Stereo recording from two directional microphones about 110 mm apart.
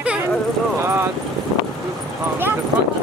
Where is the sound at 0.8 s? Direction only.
25° right (ahead or behind).